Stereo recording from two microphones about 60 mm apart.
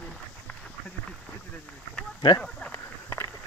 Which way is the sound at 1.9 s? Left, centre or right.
Centre.